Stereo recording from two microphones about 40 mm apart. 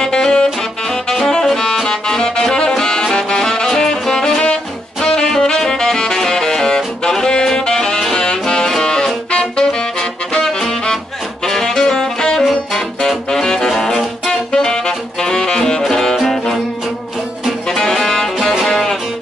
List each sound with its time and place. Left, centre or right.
0.0 s music: centre
5.0 s saxophone: centre
10.4 s music: centre
11.4 s saxophone: centre
12.4 s music: centre
13.7 s saxophone: centre
15.9 s music: centre
17.6 s saxophone: centre
18.7 s music: centre